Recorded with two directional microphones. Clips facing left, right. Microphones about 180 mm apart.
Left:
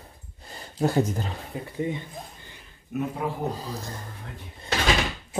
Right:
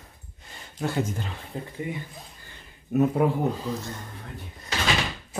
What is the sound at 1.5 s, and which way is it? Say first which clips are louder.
Speech: right 2 dB; 10° left (ahead or behind).